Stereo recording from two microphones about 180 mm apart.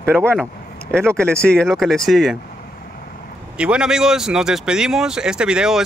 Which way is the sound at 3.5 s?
5° right (ahead or behind).